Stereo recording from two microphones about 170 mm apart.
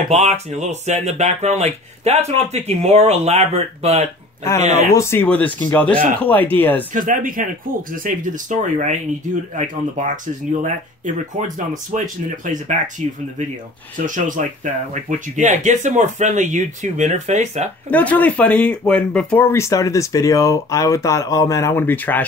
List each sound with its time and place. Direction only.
0.1 s speech: 40° right (ahead or behind)
4.9 s speech: 15° left (ahead or behind)
6.9 s speech: 50° right (ahead or behind)
13.9 s speech: 50° right (ahead or behind)
17.9 s speech: 10° left (ahead or behind)